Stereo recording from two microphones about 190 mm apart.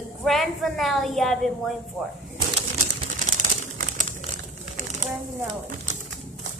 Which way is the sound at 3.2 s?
40° right (ahead or behind).